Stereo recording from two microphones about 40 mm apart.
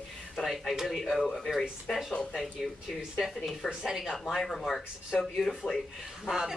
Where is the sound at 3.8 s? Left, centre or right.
Centre.